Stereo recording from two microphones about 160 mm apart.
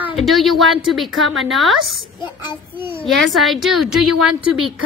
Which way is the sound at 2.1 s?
30° left (ahead or behind).